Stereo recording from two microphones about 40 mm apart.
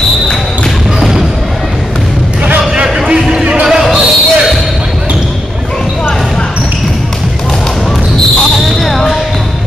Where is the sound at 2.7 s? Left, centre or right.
Right.